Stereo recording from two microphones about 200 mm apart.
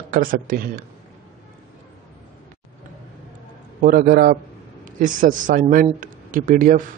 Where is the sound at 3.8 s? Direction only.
45° right (ahead or behind).